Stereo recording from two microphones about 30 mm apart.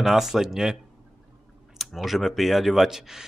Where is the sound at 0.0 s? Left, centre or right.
Centre.